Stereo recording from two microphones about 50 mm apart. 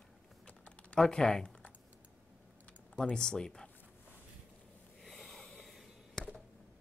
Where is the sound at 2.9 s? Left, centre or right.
Left.